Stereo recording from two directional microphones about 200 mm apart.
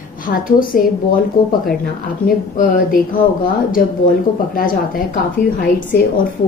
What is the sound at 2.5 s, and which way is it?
Speech, 45° left (ahead or behind).